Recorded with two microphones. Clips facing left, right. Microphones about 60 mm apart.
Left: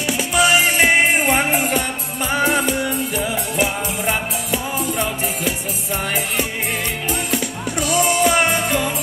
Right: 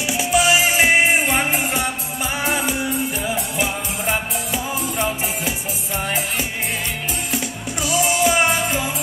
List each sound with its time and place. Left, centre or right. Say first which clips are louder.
0.0 s music: left 1 dB; centre
0.3 s music: left 1 dB; left
0.7 s music: left 1 dB; centre
2.3 s music: left 5 dB; left
7.2 s music: left 3 dB; left